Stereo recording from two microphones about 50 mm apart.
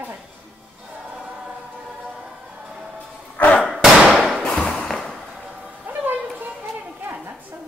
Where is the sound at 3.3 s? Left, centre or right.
Left.